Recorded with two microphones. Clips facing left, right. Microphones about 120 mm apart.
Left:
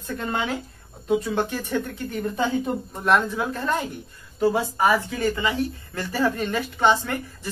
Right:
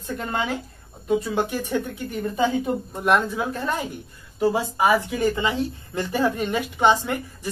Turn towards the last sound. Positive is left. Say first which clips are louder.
# right 2 dB
turn(degrees=-15)  # may be behind; listen again after turning